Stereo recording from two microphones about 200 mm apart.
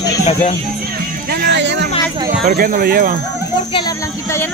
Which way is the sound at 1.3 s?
45° right (ahead or behind).